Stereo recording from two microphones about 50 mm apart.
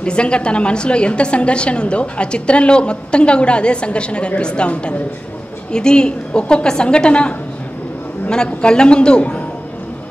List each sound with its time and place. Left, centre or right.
0.0 s a woman's voice: left